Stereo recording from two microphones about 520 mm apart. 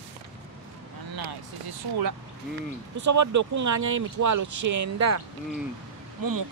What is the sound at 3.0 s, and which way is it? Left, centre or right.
Speech, right.